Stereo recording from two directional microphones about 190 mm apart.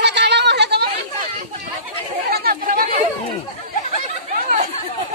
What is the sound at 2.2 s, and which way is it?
Chatter, 55° right (ahead or behind).